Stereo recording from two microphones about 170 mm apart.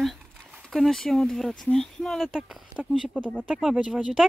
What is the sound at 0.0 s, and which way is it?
A woman's voice, centre (ahead or behind).